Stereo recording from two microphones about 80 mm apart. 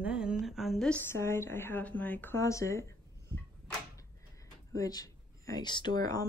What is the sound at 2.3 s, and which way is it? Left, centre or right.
Speech, left.